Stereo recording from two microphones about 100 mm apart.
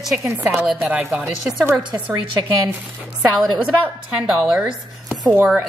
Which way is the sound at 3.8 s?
10° right (ahead or behind).